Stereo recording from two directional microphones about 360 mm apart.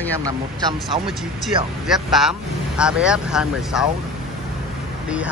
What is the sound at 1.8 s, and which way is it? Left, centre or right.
Speech, centre.